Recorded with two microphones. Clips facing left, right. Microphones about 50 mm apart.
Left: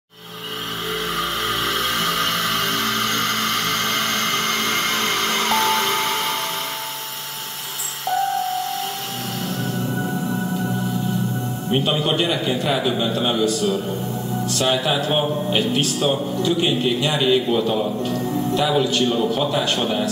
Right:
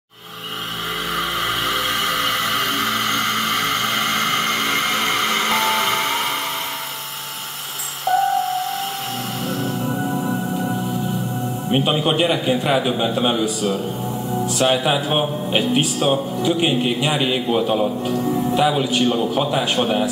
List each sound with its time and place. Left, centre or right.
2.7 s vehicle: right
8.1 s a sound: centre
9.8 s music: centre
11.7 s speech: centre